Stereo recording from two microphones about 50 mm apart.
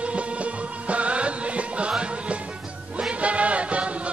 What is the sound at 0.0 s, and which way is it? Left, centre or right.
Music, right.